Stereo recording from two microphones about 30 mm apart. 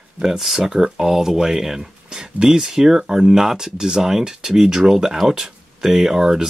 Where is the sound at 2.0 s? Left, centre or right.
Right.